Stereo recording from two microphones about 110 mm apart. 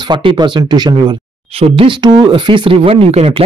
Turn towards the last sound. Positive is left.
turn(degrees=-65)  # may be behind; listen again after turning